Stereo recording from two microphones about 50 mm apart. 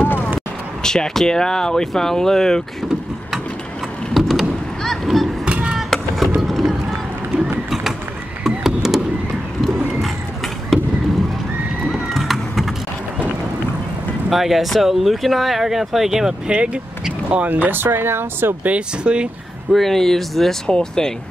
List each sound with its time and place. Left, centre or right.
0.0 s a sound: left
0.8 s speech: centre
4.1 s vehicle: centre
4.8 s a sound: centre
5.4 s music: right
5.8 s music: centre
6.4 s run: centre
8.5 s a sound: centre
10.7 s basketball bounce: centre
11.9 s a sound: centre
14.3 s speech: centre; by 17.5 s right
17.5 s speech: right
18.6 s speech: right
19.7 s speech: centre